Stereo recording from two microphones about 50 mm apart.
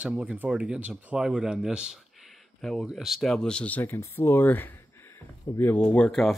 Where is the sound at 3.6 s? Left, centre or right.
Left.